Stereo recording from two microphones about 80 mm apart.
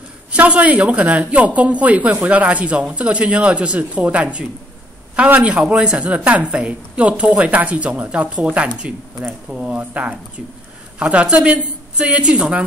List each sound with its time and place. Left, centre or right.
0.3 s a woman's voice: centre